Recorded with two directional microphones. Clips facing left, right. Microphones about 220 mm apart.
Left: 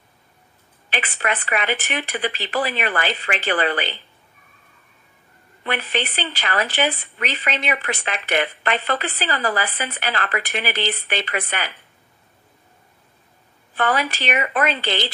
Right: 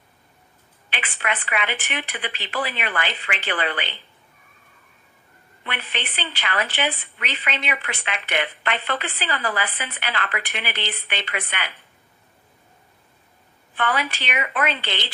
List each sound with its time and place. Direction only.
0.8 s speech: 40° left (ahead or behind)
5.6 s speech: 40° left (ahead or behind)
13.7 s speech: 40° left (ahead or behind)